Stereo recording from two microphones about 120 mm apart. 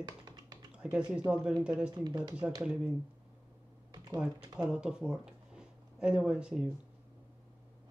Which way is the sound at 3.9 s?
35° right (ahead or behind).